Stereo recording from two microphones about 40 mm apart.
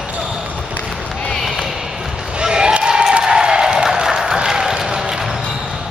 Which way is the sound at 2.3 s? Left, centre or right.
Right.